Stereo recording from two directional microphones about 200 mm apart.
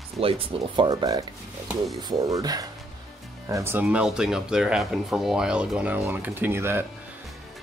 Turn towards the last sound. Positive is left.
turn(degrees=-10)  # may be behind; listen again after turning